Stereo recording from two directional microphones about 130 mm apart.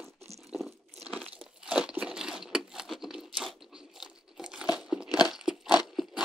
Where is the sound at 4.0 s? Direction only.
5° right (ahead or behind).